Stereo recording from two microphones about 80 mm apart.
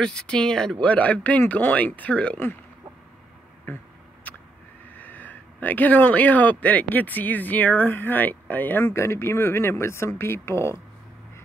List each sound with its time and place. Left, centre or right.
0.0 s speech: centre
3.7 s speech: left
4.9 s speech: left